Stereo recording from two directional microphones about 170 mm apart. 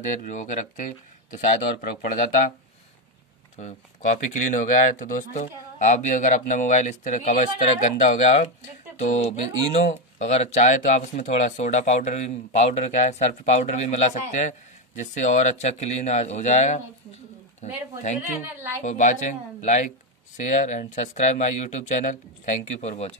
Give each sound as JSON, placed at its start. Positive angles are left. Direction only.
{"t": 0.1, "sound": "speech", "side_deg": 45}
{"t": 3.5, "sound": "speech", "side_deg": 45}
{"t": 10.1, "sound": "speech", "side_deg": 40}